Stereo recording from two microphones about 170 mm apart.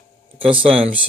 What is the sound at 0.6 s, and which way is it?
Speech, 35° right (ahead or behind).